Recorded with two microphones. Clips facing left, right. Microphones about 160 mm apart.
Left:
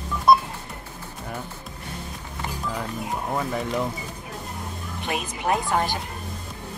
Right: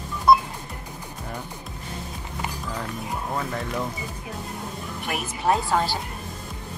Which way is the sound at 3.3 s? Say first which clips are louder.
Left 4 dB; 10° left (ahead or behind).